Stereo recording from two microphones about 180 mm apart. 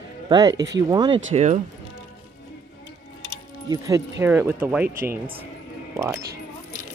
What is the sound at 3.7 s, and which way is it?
Speech, 15° right (ahead or behind).